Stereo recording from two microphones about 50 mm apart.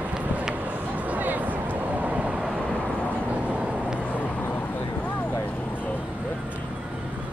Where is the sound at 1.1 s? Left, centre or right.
Right.